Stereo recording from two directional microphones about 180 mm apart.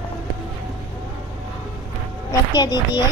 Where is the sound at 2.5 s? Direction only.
25° left (ahead or behind).